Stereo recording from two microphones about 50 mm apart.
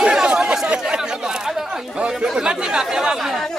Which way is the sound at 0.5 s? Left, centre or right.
Centre.